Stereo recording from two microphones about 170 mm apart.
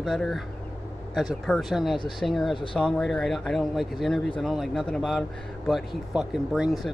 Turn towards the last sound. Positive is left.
turn(degrees=0)  # may be behind; listen again after turning